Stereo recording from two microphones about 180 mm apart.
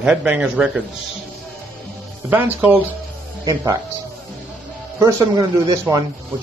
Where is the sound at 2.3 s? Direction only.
10° right (ahead or behind).